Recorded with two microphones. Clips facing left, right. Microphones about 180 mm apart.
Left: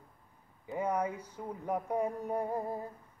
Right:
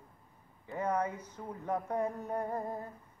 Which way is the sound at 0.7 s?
10° left (ahead or behind).